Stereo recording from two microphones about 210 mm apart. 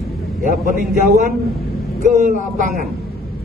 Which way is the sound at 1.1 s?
35° right (ahead or behind).